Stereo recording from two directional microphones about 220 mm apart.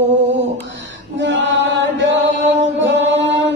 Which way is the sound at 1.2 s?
55° right (ahead or behind).